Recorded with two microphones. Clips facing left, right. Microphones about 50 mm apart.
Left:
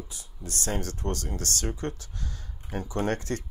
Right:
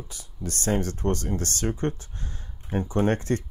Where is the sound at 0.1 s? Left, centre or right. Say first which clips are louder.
Right 4 dB; right.